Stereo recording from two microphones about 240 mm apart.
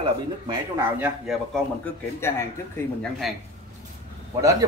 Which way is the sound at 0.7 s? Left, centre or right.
Centre.